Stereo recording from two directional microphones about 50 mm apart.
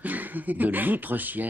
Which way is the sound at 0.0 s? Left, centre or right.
Right.